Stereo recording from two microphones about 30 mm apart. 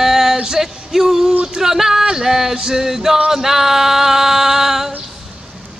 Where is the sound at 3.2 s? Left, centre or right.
Centre.